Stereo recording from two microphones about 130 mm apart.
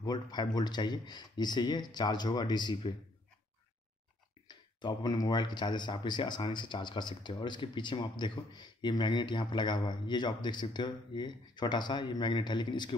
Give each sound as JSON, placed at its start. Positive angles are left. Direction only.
{"t": 0.0, "sound": "speech", "side_deg": 30}
{"t": 4.5, "sound": "speech", "side_deg": 35}